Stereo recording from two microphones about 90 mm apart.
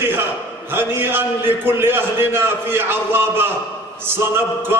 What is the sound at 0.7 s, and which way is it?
A man's voice, 25° right (ahead or behind).